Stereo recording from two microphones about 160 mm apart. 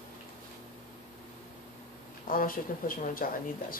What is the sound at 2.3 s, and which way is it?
Speech, 60° left (ahead or behind).